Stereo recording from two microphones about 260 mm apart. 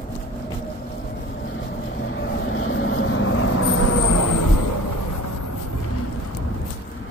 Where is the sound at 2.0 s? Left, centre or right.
Left.